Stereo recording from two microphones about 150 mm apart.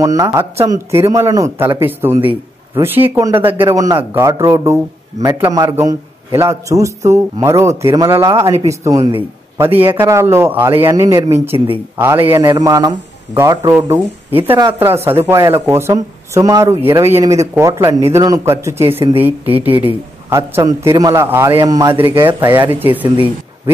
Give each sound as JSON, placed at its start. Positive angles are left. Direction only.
{"t": 0.0, "sound": "speech", "side_deg": -20}
{"t": 21.9, "sound": "speech", "side_deg": -15}